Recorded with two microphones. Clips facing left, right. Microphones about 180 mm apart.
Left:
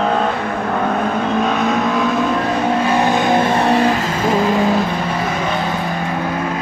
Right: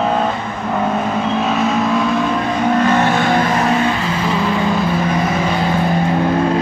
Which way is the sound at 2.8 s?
10° left (ahead or behind).